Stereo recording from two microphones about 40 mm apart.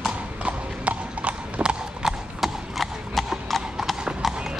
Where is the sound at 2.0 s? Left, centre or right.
Centre.